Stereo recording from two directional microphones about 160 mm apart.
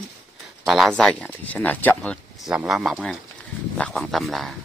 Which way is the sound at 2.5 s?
5° right (ahead or behind).